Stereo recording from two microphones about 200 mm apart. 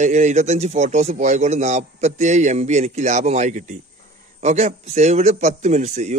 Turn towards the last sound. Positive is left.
turn(degrees=-35)  # may be behind; listen again after turning